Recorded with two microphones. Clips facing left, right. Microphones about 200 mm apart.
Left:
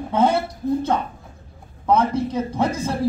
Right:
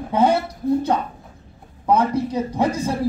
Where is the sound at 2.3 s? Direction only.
15° right (ahead or behind).